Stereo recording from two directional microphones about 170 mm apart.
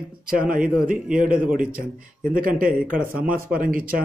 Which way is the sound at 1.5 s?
55° right (ahead or behind).